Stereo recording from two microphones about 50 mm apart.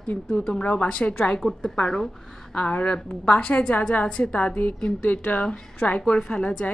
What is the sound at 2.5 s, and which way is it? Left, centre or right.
Speech, left.